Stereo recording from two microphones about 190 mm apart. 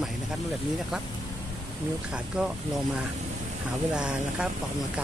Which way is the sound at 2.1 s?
5° right (ahead or behind).